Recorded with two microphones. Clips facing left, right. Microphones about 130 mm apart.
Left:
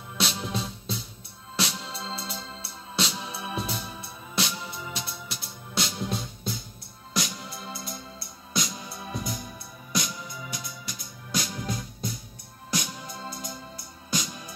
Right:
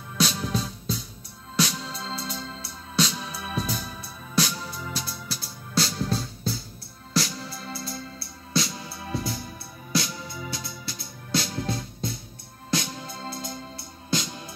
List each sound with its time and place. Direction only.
0.2 s music: 25° left (ahead or behind)